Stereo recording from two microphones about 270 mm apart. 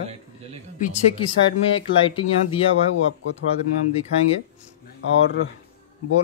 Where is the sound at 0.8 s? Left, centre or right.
Centre.